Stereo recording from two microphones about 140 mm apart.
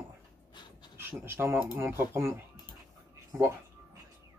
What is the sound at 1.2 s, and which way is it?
Speech, 15° right (ahead or behind).